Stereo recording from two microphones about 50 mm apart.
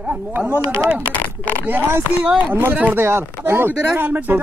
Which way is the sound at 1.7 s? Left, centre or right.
Right.